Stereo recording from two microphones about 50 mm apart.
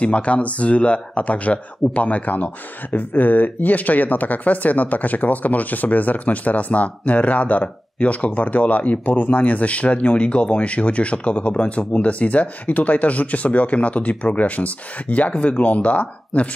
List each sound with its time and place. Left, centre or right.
0.0 s speech: left